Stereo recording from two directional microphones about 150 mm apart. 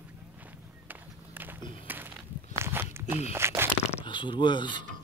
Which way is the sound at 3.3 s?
15° right (ahead or behind).